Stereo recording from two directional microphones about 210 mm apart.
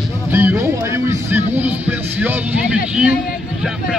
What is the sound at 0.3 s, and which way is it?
Music, 10° right (ahead or behind).